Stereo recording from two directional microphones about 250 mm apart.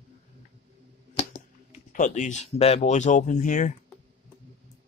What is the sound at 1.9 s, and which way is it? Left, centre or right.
Speech, left.